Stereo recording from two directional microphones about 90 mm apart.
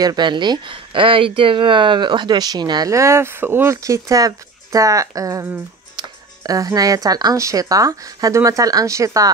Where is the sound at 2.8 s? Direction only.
35° right (ahead or behind).